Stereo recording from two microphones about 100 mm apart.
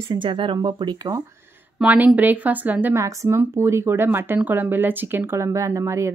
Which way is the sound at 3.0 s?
30° right (ahead or behind).